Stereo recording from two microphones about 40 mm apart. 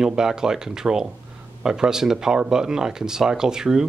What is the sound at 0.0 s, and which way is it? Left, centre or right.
Speech, centre.